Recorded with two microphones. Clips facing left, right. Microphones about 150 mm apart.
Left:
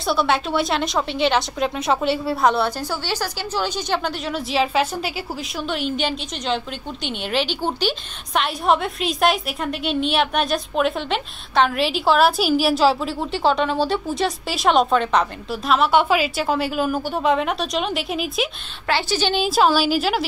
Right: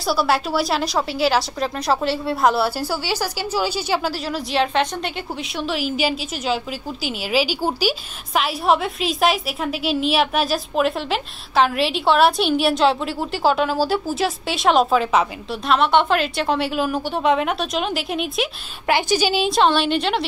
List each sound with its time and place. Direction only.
0.0 s a woman's voice: 5° right (ahead or behind)
18.9 s a woman's voice: 15° right (ahead or behind)
19.3 s a woman's voice: centre (ahead or behind)